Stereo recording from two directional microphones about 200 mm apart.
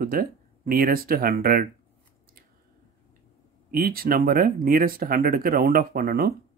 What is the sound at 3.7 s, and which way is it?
Speech, 45° right (ahead or behind).